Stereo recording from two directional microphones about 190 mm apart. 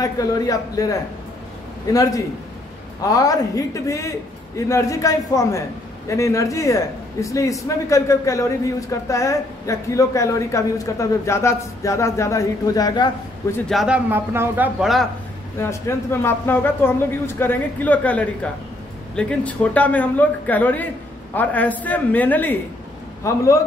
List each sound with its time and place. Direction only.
0.0 s a man's voice: 20° left (ahead or behind)
13.7 s a man's voice: 5° right (ahead or behind)
15.6 s a man's voice: 15° left (ahead or behind)